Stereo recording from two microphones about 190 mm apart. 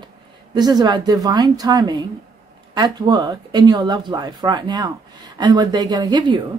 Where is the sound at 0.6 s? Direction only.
20° right (ahead or behind).